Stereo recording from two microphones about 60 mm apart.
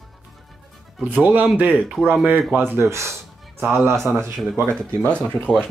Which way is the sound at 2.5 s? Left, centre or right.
Right.